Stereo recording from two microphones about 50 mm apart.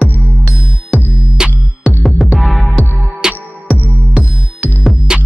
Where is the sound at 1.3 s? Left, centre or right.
Centre.